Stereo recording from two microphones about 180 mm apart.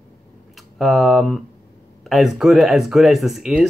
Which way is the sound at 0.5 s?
Centre (ahead or behind).